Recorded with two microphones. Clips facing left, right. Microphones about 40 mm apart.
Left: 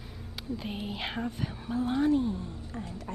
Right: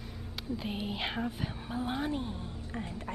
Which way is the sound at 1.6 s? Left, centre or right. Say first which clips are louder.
Left 8 dB; centre.